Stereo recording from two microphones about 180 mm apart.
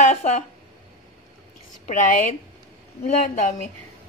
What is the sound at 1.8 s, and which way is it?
Speech, 45° left (ahead or behind).